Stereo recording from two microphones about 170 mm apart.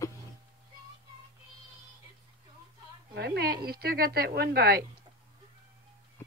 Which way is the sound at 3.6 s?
65° right (ahead or behind).